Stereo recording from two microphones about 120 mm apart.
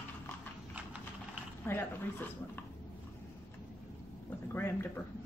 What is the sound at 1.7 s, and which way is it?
Speech, 15° left (ahead or behind).